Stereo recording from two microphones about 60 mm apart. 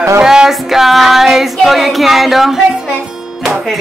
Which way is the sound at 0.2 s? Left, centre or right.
Centre.